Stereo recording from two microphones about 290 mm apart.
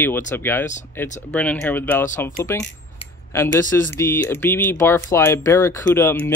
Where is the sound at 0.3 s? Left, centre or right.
Centre.